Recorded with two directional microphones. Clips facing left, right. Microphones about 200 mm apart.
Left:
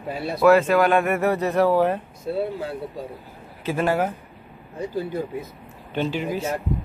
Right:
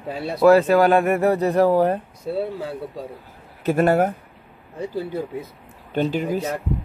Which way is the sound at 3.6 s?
45° right (ahead or behind).